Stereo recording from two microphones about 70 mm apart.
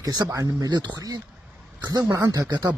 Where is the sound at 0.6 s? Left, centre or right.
Right.